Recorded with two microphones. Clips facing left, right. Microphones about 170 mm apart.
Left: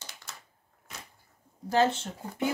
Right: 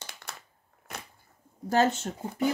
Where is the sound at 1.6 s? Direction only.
45° right (ahead or behind).